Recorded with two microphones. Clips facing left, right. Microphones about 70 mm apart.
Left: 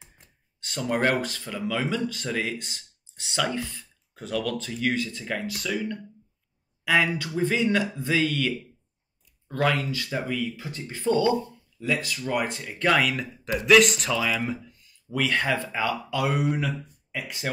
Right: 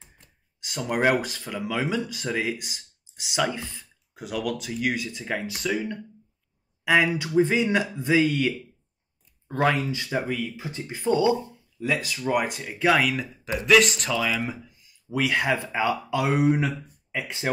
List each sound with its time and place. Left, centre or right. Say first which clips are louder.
0.6 s speech: even; centre